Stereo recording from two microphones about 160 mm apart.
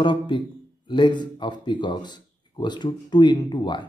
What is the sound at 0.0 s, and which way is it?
A man's voice, 30° left (ahead or behind).